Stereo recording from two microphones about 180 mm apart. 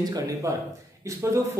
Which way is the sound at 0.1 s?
20° right (ahead or behind).